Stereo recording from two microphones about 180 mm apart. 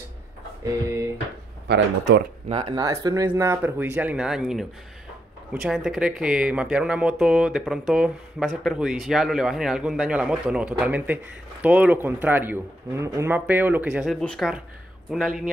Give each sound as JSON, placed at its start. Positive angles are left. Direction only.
{"t": 1.7, "sound": "speech", "side_deg": -70}
{"t": 2.5, "sound": "speech", "side_deg": -25}